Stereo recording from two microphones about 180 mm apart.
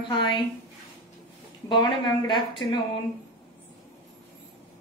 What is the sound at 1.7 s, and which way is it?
Speech, 25° left (ahead or behind).